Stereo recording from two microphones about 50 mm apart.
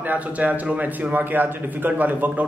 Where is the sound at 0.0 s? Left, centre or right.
Right.